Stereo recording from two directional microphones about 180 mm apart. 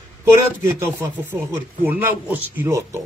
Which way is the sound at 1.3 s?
10° right (ahead or behind).